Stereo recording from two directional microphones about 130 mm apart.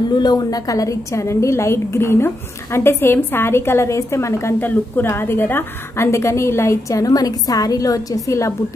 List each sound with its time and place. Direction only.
0.1 s a woman's voice: 30° left (ahead or behind)